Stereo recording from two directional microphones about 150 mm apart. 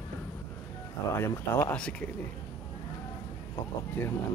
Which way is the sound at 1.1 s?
15° left (ahead or behind).